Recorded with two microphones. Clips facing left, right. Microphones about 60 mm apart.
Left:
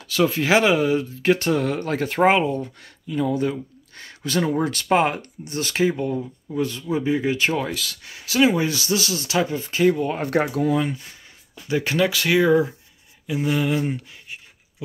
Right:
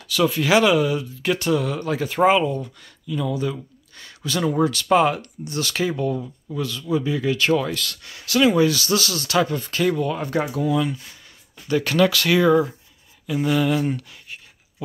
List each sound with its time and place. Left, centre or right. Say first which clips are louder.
0.1 s speech: even; left
7.7 s speech: right 1 dB; centre
10.4 s speech: left 1 dB; left
11.6 s speech: right 2 dB; centre